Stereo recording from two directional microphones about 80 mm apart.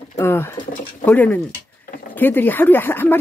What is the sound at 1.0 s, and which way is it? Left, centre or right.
Speech, left.